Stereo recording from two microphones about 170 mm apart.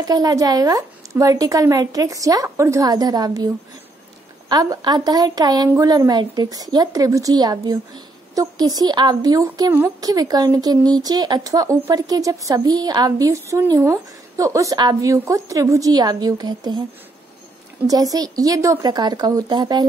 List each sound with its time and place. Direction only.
0.0 s a woman's voice: 25° right (ahead or behind)
4.5 s a woman's voice: 25° right (ahead or behind)
17.8 s a woman's voice: 20° right (ahead or behind)